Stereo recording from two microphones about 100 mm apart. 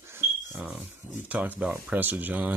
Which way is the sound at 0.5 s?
15° right (ahead or behind).